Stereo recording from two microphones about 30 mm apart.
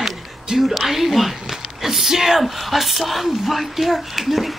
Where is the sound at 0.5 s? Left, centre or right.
Centre.